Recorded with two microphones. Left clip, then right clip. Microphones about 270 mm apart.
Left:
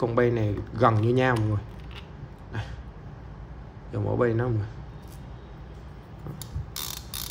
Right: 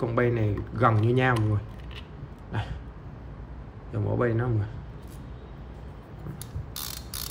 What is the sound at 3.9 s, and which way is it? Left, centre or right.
Speech, centre.